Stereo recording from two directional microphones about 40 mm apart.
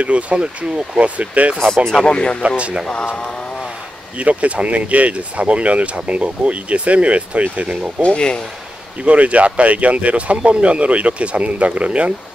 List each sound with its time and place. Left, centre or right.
0.0 s speech: right
2.0 s speech: left
2.4 s speech: right
4.2 s speech: right
8.0 s speech: left
9.0 s speech: right